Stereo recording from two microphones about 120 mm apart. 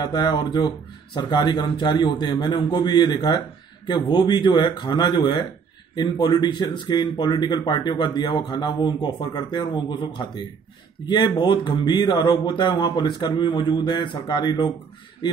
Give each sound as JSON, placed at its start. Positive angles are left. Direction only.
{"t": 0.0, "sound": "speech", "side_deg": 35}